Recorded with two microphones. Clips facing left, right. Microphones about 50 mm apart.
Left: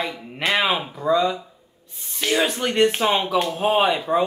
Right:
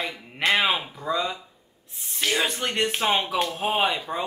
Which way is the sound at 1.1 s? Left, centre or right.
Centre.